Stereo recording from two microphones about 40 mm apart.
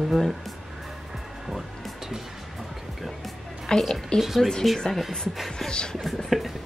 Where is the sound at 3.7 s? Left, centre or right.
Left.